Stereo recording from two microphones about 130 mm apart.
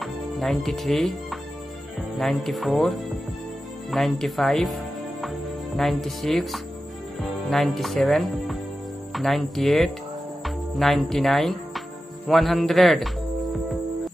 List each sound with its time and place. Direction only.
0.0 s speech: centre (ahead or behind)
5.8 s speech: centre (ahead or behind)